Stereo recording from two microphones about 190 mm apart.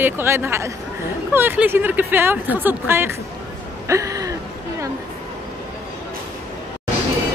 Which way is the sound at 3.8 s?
15° right (ahead or behind).